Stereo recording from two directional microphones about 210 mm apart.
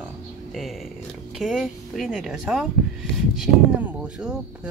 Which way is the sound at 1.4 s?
Centre (ahead or behind).